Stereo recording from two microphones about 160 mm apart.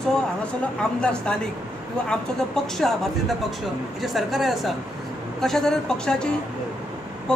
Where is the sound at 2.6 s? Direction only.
Centre (ahead or behind).